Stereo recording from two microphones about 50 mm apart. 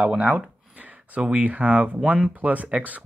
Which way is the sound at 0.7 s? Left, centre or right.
Right.